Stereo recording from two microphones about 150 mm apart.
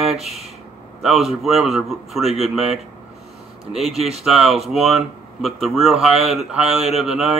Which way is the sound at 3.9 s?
45° right (ahead or behind).